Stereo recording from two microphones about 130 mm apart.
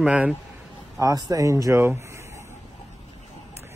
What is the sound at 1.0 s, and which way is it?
Speech, 25° right (ahead or behind).